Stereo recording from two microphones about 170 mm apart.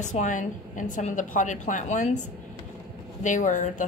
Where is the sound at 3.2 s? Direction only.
50° left (ahead or behind).